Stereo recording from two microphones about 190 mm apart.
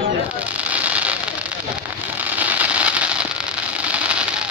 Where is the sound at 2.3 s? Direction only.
10° right (ahead or behind).